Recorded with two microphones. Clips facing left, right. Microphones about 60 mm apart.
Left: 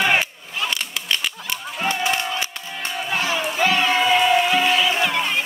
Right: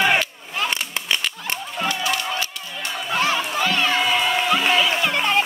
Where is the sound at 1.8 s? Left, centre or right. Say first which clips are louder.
Left 2 dB; left.